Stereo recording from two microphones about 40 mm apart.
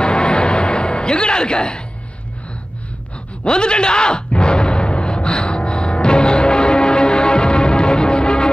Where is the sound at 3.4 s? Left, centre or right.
Left.